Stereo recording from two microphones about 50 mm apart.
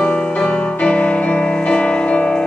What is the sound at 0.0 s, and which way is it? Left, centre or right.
Music, left.